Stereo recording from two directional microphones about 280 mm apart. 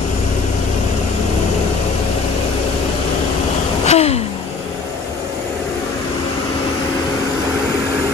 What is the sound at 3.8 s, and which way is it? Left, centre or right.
Gasp, left.